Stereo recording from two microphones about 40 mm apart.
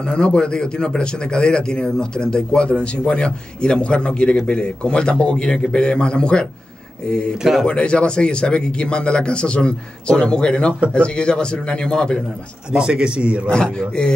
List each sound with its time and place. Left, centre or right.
0.0 s speech: left
12.7 s speech: right
13.5 s speech: left